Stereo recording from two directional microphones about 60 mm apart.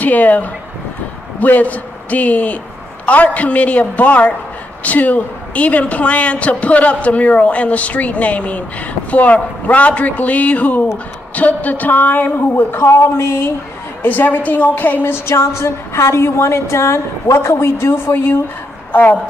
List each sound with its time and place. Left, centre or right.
0.0 s a woman's voice: left
14.0 s a woman's voice: left